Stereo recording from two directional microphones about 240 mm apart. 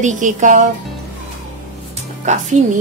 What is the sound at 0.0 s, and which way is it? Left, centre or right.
Speech, right.